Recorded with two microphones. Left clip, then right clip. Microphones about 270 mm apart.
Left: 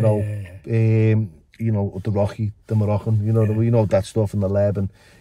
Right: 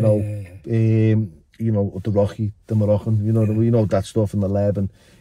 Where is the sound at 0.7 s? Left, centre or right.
Centre.